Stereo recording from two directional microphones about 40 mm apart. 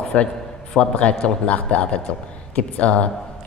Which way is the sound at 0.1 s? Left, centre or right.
Left.